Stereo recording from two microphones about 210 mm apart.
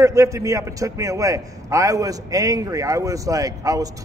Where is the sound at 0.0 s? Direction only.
15° right (ahead or behind).